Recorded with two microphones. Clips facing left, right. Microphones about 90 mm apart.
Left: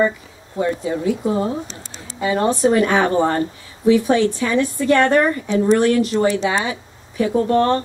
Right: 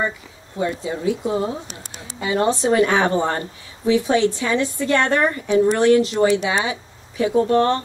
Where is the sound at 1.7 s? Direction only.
35° left (ahead or behind).